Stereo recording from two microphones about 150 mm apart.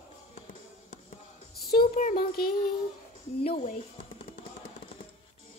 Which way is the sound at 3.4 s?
40° left (ahead or behind).